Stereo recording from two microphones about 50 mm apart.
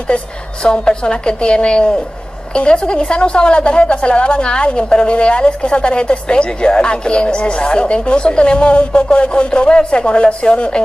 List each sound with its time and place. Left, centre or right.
0.1 s a woman's voice: centre